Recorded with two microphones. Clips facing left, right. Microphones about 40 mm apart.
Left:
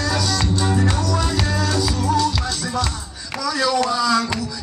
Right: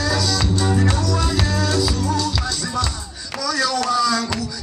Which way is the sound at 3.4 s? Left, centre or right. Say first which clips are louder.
Left 1 dB; centre.